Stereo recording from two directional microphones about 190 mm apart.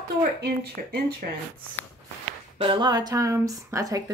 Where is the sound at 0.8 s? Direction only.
45° right (ahead or behind).